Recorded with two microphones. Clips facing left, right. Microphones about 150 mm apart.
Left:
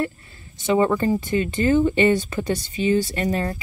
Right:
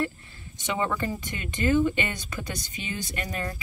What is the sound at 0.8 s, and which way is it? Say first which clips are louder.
Speech: left 9 dB; 35° left (ahead or behind).